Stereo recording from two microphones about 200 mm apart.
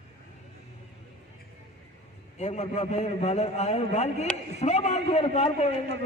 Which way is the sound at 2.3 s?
35° left (ahead or behind).